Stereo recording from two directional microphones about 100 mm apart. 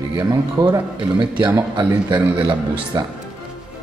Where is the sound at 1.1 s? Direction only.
50° right (ahead or behind).